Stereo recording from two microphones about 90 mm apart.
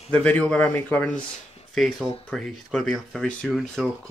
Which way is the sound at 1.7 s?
Centre (ahead or behind).